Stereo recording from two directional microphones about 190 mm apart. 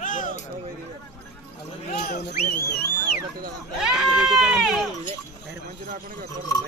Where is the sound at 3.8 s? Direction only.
Centre (ahead or behind).